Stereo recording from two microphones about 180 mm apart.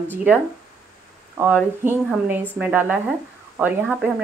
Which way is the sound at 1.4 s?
10° right (ahead or behind).